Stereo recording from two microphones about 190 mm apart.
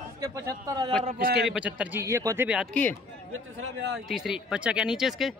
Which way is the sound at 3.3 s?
75° right (ahead or behind).